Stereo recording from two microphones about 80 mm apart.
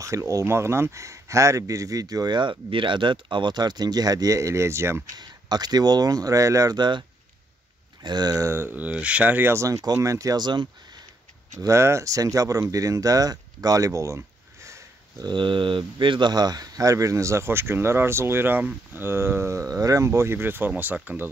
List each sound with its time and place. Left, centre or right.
0.0 s speech: right
2.7 s speech: right
5.1 s speech: right
6.8 s speech: right
8.4 s speech: right
9.5 s speech: right
10.4 s speech: right
11.6 s speech: right
15.2 s speech: right
20.1 s speech: right